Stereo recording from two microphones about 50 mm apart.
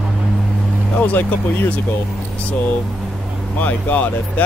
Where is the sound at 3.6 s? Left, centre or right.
Left.